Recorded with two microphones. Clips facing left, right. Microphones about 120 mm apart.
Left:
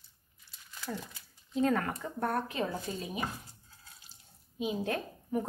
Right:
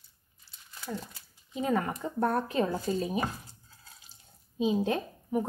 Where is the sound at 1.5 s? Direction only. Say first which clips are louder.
Even; 15° right (ahead or behind).